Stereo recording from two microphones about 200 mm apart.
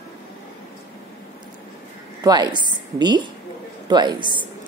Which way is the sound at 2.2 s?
20° right (ahead or behind).